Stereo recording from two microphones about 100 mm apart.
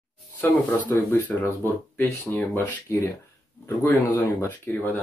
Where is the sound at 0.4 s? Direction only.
15° left (ahead or behind).